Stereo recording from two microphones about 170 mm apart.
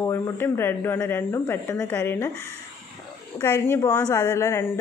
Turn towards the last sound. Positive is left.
turn(degrees=15)  # may be behind; listen again after turning